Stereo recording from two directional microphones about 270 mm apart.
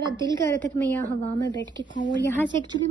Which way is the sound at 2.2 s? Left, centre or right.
Centre.